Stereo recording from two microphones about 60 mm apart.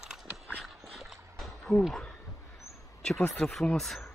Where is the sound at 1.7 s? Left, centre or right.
Centre.